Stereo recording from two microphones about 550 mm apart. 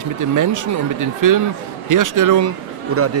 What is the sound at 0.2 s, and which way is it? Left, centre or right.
Speech, right.